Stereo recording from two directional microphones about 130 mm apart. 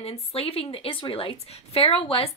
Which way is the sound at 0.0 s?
50° left (ahead or behind).